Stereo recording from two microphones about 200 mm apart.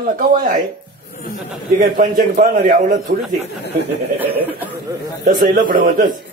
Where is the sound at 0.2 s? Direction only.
45° right (ahead or behind).